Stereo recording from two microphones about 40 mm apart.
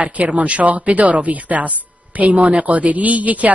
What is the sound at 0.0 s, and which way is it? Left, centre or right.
Speech, right.